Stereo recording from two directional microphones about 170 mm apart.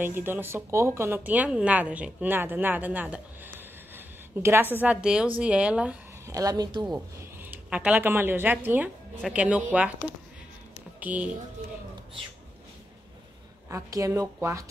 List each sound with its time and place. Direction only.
0.0 s speech: 10° right (ahead or behind)
3.5 s a sound: 15° right (ahead or behind)
4.8 s a woman's voice: 5° right (ahead or behind)
6.2 s speech: 20° right (ahead or behind)
7.5 s speech: 10° right (ahead or behind)
13.7 s speech: 20° right (ahead or behind)